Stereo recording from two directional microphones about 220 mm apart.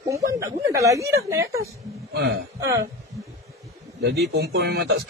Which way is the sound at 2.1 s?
50° right (ahead or behind).